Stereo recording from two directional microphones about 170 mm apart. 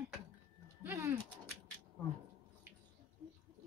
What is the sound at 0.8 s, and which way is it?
Pigeon, 15° right (ahead or behind).